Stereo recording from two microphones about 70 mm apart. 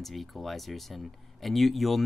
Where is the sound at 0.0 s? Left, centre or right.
Centre.